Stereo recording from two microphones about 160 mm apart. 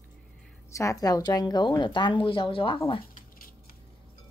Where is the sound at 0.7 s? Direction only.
20° left (ahead or behind).